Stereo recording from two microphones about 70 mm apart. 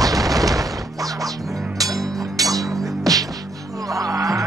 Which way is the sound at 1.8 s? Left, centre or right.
Right.